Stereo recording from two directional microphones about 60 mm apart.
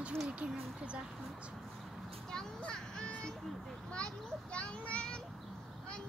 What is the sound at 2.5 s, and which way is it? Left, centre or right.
A child's voice, centre.